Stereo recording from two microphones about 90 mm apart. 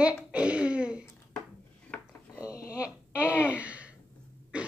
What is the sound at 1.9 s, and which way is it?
Dishes, 15° left (ahead or behind).